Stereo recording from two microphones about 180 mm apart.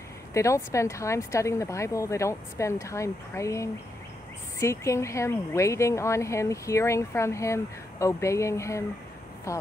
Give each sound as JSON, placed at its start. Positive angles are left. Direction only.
{"t": 0.3, "sound": "speech", "side_deg": 15}